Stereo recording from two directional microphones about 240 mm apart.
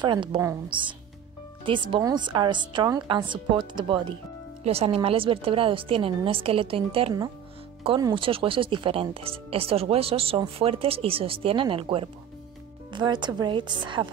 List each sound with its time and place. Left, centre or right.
0.0 s speech: centre